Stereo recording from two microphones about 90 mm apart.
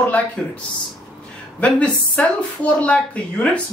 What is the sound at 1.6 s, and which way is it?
A woman's voice, 15° left (ahead or behind).